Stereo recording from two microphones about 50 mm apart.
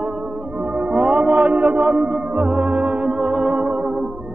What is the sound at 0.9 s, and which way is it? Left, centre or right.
Music, right.